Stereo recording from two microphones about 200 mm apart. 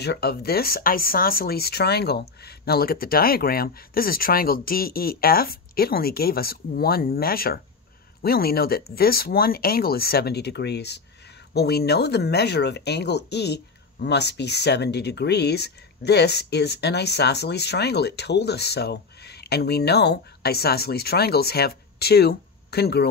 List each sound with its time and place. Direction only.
0.0 s speech: 55° left (ahead or behind)